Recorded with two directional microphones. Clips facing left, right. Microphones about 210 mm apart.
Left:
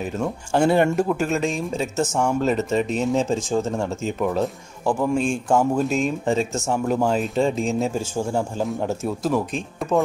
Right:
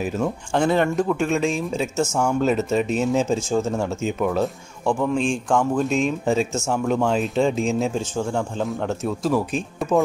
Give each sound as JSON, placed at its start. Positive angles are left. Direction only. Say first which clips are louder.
{"t": 0.5, "sound": "speech", "louder": "left 3 dB", "side_deg": 10}